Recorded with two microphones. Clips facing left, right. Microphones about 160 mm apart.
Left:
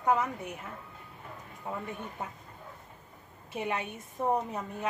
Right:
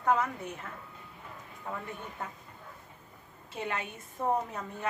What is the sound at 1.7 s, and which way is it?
Speech, 20° left (ahead or behind).